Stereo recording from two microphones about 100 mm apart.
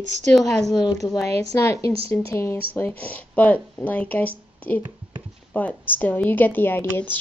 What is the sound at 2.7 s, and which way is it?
Speech, 20° left (ahead or behind).